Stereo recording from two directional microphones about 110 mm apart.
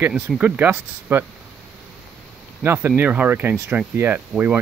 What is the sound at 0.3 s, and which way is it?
Speech, centre (ahead or behind).